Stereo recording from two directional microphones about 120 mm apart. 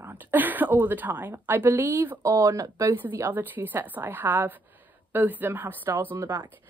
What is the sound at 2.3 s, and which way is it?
Speech, 30° right (ahead or behind).